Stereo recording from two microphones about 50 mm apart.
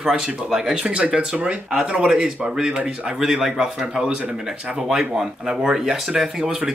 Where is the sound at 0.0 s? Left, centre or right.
Centre.